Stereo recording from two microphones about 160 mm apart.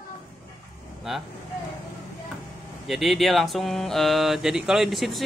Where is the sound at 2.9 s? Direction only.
Centre (ahead or behind).